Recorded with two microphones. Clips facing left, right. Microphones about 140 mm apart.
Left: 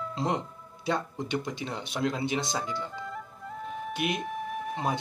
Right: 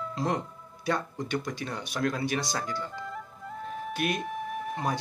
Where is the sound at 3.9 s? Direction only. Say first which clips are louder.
Right 1 dB; 20° left (ahead or behind).